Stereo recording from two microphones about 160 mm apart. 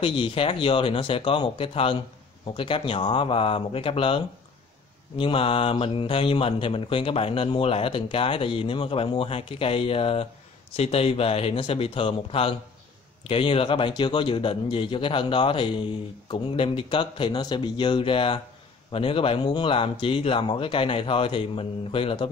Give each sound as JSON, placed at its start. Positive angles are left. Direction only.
{"t": 0.0, "sound": "speech", "side_deg": 35}